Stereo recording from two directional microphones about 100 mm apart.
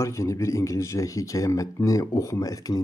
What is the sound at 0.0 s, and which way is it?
Speech, 30° left (ahead or behind).